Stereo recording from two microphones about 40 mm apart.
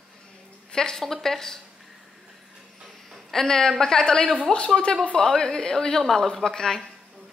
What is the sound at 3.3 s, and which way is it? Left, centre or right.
A woman's voice, centre.